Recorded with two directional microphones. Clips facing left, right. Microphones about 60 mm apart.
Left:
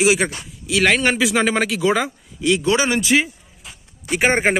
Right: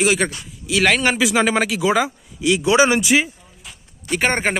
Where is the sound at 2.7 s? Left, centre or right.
Centre.